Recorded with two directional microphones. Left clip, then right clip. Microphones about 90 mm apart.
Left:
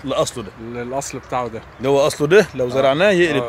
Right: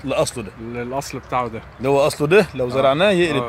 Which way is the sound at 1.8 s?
35° left (ahead or behind).